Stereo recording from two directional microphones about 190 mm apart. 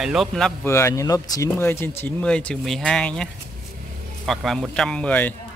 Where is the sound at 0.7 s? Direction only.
15° left (ahead or behind).